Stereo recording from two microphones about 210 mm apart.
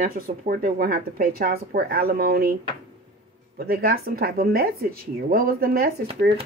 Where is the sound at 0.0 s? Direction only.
40° right (ahead or behind).